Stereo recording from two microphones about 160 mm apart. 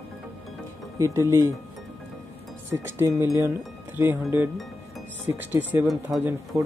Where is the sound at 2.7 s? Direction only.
15° right (ahead or behind).